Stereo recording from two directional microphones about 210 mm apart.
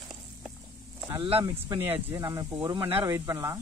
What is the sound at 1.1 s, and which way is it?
A man's voice, 25° right (ahead or behind).